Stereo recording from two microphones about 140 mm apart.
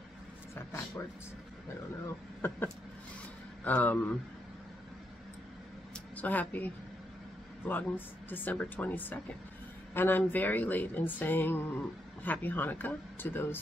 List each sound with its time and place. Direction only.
0.6 s vehicle: 20° left (ahead or behind)
3.6 s speech: 10° left (ahead or behind)
6.1 s speech: 10° left (ahead or behind)